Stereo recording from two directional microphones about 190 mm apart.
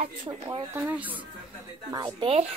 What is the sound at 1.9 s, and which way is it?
Speech, 25° right (ahead or behind).